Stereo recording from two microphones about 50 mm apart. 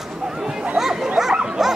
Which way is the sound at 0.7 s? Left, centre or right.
Centre.